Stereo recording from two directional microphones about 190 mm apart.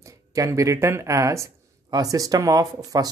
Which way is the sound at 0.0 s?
15° right (ahead or behind).